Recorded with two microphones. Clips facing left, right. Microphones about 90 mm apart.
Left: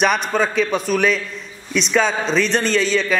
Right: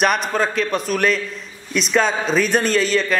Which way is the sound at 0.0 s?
Centre (ahead or behind).